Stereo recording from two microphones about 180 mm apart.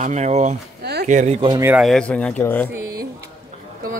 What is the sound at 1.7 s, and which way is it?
Speech, centre (ahead or behind).